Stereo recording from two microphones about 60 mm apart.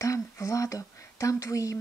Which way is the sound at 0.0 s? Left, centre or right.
Left.